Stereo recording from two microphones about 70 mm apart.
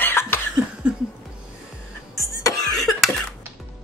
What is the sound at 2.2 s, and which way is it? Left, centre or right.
Music, left.